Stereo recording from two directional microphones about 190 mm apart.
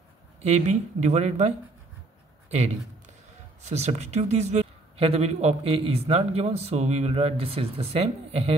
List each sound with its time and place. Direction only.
0.4 s speech: 35° right (ahead or behind)
2.5 s speech: 35° right (ahead or behind)